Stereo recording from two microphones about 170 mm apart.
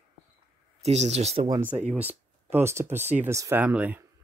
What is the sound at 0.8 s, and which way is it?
Speech, 40° right (ahead or behind).